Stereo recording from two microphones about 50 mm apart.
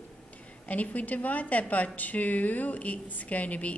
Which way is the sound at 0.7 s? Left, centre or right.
Left.